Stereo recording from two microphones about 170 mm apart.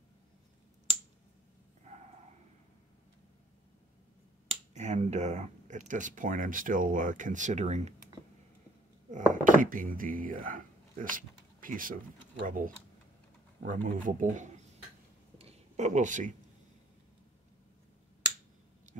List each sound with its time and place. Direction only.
0.9 s finger snapping: 40° right (ahead or behind)
4.7 s speech: 45° right (ahead or behind)
9.3 s speech: 50° right (ahead or behind)
15.3 s a sound: 40° right (ahead or behind)